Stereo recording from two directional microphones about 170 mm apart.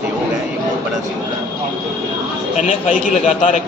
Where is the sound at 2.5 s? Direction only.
45° left (ahead or behind).